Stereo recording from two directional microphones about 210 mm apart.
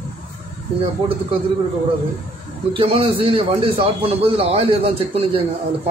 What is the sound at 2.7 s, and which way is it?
A man's voice, 25° right (ahead or behind).